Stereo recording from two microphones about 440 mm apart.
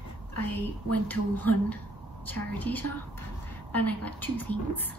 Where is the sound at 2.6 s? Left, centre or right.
Centre.